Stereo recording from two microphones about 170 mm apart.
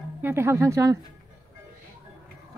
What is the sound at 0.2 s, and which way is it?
Speech, 15° right (ahead or behind).